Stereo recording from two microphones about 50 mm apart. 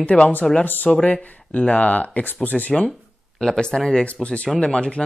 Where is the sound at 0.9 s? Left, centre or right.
Left.